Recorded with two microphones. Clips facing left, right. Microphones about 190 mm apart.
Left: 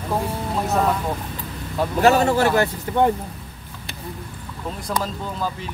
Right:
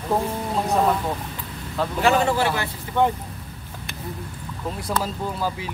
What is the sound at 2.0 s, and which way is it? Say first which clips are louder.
Speech: left 4 dB; 40° left (ahead or behind).